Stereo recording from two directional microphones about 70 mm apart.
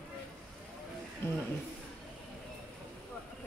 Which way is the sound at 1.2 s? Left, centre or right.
Left.